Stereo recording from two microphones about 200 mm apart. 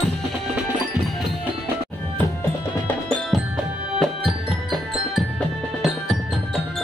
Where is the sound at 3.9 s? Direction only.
Centre (ahead or behind).